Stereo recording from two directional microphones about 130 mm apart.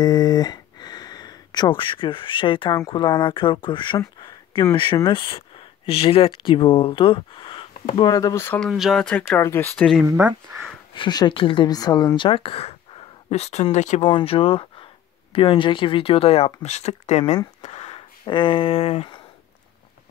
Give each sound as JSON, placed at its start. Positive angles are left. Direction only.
{"t": 0.0, "sound": "a sound", "side_deg": 30}
{"t": 2.9, "sound": "speech", "side_deg": 35}
{"t": 8.0, "sound": "speech", "side_deg": 30}
{"t": 8.5, "sound": "speech", "side_deg": 0}
{"t": 9.0, "sound": "speech", "side_deg": 10}
{"t": 9.8, "sound": "speech", "side_deg": 5}
{"t": 10.0, "sound": "speech", "side_deg": -15}
{"t": 11.0, "sound": "speech", "side_deg": 35}
{"t": 12.2, "sound": "speech", "side_deg": 45}
{"t": 14.0, "sound": "speech", "side_deg": 40}
{"t": 17.6, "sound": "a sound", "side_deg": 55}
{"t": 18.2, "sound": "speech", "side_deg": 35}